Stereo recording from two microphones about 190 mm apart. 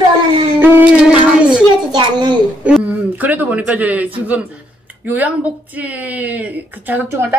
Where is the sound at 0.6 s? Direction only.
10° right (ahead or behind).